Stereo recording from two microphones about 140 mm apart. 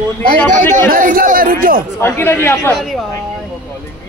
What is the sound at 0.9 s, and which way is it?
Speech, 90° right.